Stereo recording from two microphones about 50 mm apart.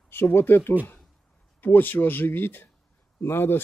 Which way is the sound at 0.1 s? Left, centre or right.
Left.